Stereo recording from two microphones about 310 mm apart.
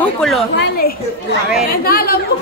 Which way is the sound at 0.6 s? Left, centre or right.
Left.